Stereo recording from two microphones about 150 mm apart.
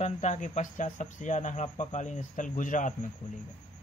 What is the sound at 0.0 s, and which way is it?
Speech, 55° left (ahead or behind).